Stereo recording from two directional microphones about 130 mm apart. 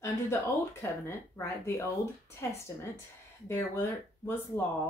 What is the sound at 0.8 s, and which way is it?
Speech, 20° left (ahead or behind).